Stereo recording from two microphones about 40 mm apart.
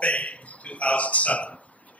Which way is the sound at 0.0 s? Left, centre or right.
Left.